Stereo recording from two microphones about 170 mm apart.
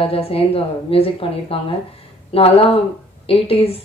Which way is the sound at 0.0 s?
35° left (ahead or behind).